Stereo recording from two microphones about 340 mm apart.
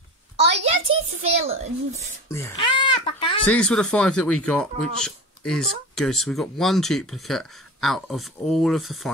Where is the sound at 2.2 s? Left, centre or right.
Centre.